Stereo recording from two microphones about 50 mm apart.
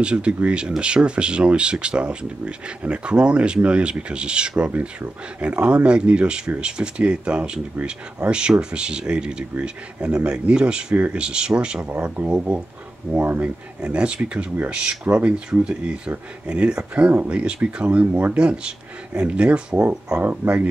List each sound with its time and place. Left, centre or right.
0.0 s speech: centre
13.1 s speech: right
13.7 s speech: right
20.2 s speech: right